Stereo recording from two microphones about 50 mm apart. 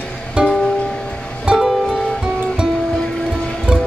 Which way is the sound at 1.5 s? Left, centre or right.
Centre.